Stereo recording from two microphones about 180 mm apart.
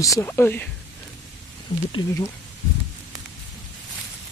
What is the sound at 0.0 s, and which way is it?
Speech, 15° left (ahead or behind).